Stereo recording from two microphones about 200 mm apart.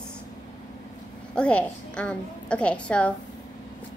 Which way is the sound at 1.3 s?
5° left (ahead or behind).